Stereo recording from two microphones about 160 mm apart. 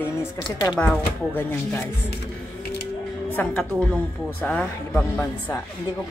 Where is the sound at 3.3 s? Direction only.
10° left (ahead or behind).